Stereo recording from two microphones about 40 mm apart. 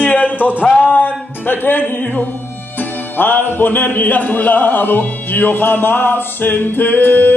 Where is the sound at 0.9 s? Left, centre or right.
Left.